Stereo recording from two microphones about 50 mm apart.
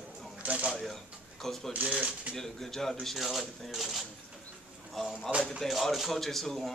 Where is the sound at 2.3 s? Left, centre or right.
Centre.